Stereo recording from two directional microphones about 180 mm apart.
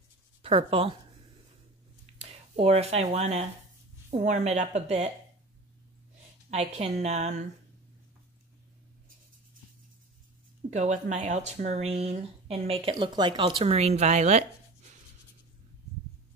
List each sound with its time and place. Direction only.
0.4 s speech: 30° right (ahead or behind)
2.0 s speech: 35° right (ahead or behind)
6.5 s speech: 35° right (ahead or behind)
10.7 s speech: 45° right (ahead or behind)